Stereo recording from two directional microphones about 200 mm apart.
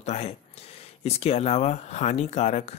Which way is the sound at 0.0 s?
30° left (ahead or behind).